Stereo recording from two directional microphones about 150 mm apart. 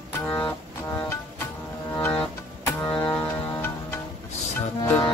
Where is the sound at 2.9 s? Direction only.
35° left (ahead or behind).